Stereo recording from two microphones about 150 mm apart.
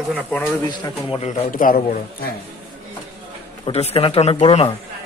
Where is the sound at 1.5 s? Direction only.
65° left (ahead or behind).